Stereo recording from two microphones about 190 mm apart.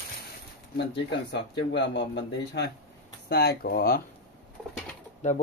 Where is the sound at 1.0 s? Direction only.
65° left (ahead or behind).